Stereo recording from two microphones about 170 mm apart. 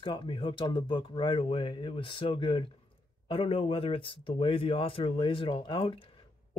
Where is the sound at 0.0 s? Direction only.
30° left (ahead or behind).